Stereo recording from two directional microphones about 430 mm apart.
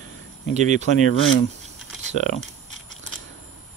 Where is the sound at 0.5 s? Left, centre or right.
Centre.